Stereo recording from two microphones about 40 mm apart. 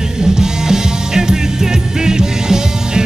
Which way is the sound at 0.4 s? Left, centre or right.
Centre.